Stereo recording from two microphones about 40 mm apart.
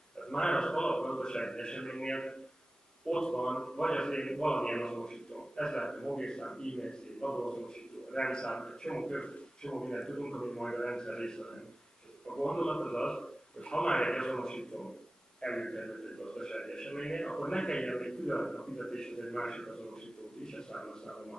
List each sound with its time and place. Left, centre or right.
0.3 s a man's voice: centre